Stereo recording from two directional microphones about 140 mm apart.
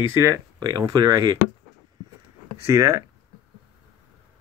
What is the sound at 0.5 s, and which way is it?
Speech, 30° right (ahead or behind).